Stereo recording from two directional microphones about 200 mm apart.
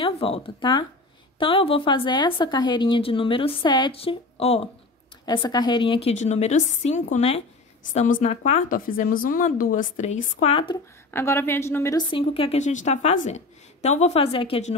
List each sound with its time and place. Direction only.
0.0 s a woman's voice: 30° left (ahead or behind)
11.1 s a woman's voice: 10° left (ahead or behind)
12.1 s a woman's voice: 30° left (ahead or behind)